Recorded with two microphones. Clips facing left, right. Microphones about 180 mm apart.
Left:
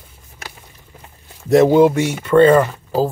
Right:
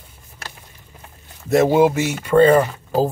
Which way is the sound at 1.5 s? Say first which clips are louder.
Left 3 dB; 5° right (ahead or behind).